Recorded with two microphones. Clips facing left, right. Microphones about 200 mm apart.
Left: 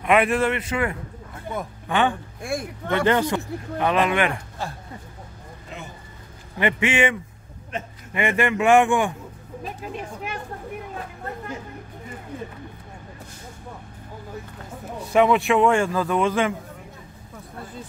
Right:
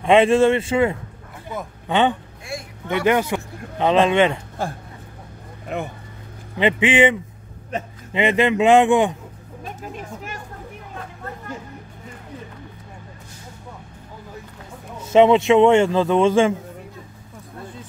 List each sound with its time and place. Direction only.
0.0 s a man's voice: 25° right (ahead or behind)
5.7 s speech: 60° right (ahead or behind)
6.6 s a man's voice: 20° right (ahead or behind)
9.8 s speech: 45° right (ahead or behind)
15.0 s a man's voice: 20° right (ahead or behind)